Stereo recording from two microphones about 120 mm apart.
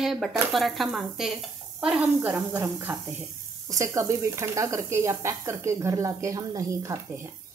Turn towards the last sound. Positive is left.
turn(degrees=-30)  # may be behind; listen again after turning